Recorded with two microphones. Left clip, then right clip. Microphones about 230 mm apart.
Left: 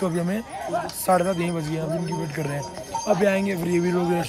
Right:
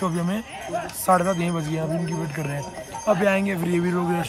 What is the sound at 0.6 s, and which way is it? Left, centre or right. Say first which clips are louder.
Speech: left 3 dB; left.